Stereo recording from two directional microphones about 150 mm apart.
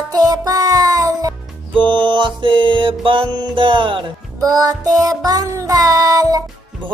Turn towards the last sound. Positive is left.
turn(degrees=-25)  # may be behind; listen again after turning